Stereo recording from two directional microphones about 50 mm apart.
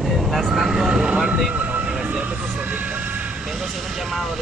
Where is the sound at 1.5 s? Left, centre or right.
Right.